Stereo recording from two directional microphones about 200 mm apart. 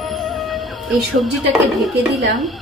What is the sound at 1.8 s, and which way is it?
Dishes, centre (ahead or behind).